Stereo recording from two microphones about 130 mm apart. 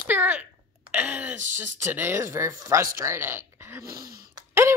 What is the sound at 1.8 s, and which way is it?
Speech, 15° right (ahead or behind).